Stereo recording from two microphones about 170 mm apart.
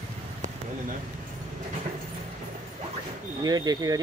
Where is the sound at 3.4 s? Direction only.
25° right (ahead or behind).